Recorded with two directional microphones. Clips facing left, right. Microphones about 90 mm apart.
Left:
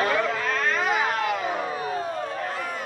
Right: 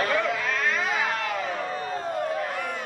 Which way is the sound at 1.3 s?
15° left (ahead or behind).